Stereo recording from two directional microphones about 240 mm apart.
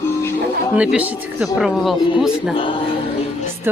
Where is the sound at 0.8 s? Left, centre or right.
Centre.